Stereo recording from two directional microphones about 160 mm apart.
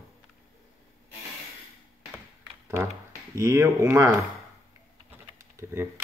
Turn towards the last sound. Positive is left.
turn(degrees=-15)  # may be behind; listen again after turning